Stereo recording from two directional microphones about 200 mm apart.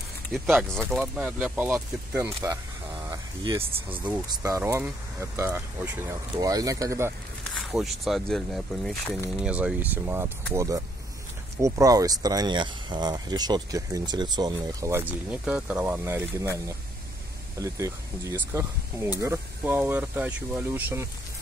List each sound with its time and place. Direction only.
0.7 s speech: centre (ahead or behind)
3.1 s a sound: 15° right (ahead or behind)
4.3 s speech: 15° right (ahead or behind)
7.7 s speech: centre (ahead or behind)